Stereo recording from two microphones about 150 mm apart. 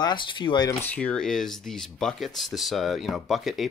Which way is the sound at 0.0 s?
30° left (ahead or behind).